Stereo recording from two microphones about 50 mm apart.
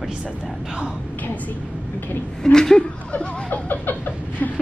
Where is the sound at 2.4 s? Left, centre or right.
Centre.